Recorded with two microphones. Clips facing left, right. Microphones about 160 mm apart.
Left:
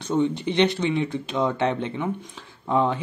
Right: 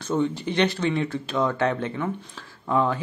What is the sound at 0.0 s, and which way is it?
Speech, 20° left (ahead or behind).